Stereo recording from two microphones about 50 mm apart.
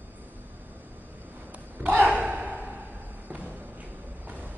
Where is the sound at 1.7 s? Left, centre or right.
Right.